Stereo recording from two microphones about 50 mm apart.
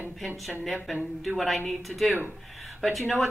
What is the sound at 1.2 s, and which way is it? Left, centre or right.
A woman's voice, centre.